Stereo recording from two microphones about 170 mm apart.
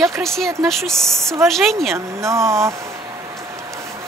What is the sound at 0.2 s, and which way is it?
Speech, centre (ahead or behind).